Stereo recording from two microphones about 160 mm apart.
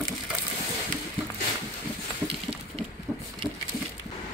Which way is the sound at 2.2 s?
35° right (ahead or behind).